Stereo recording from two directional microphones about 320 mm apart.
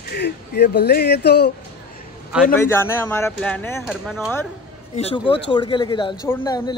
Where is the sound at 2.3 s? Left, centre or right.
Centre.